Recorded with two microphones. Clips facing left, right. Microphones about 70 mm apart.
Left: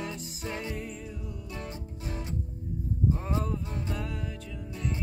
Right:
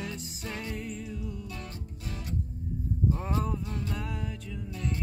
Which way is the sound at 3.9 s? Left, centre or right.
Centre.